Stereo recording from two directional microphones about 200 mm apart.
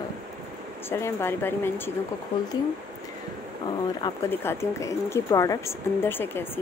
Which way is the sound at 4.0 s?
15° left (ahead or behind).